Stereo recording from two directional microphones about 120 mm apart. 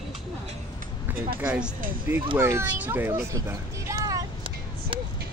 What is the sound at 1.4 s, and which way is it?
A child's voice, 10° right (ahead or behind).